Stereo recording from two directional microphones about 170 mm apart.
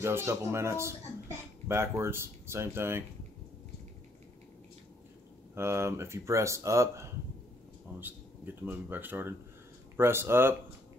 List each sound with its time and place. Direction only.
0.0 s speech: 15° right (ahead or behind)
5.5 s speech: 15° right (ahead or behind)